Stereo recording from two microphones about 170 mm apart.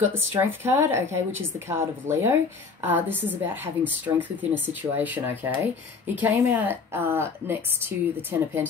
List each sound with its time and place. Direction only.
0.3 s a woman's voice: 15° right (ahead or behind)